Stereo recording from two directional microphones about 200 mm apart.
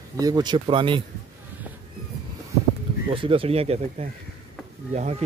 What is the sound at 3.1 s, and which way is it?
Speech, 25° right (ahead or behind).